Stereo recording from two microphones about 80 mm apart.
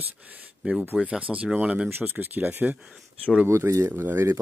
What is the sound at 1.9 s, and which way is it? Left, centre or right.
Speech, right.